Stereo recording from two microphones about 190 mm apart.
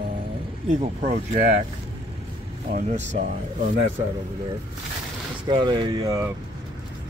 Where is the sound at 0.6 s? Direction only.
35° right (ahead or behind).